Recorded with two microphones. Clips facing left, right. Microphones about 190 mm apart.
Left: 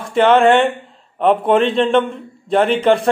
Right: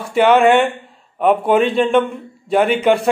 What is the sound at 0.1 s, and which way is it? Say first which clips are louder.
Speech: even; 5° right (ahead or behind).